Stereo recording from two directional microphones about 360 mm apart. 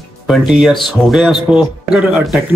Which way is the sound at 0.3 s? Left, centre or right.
Centre.